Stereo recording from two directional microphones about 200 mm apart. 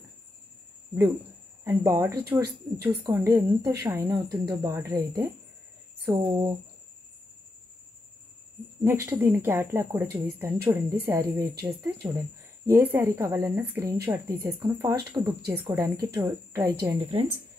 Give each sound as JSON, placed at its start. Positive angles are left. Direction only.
{"t": 1.6, "sound": "speech", "side_deg": -10}
{"t": 8.8, "sound": "speech", "side_deg": -10}